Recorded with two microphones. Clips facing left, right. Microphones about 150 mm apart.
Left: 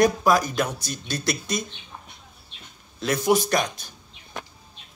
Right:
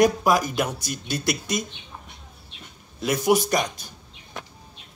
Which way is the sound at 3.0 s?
10° right (ahead or behind).